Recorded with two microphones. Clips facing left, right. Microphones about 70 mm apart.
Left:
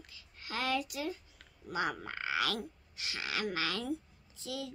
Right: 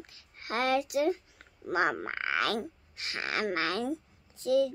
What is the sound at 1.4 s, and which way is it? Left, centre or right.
Speech, right.